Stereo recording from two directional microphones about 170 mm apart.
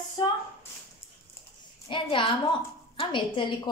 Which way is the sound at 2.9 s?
30° left (ahead or behind).